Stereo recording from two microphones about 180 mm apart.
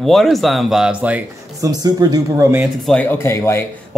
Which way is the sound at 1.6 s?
20° right (ahead or behind).